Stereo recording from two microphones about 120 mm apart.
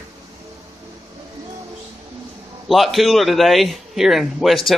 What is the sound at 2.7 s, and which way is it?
A man's voice, centre (ahead or behind).